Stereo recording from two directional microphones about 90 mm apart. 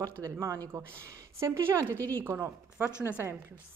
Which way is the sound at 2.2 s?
25° right (ahead or behind).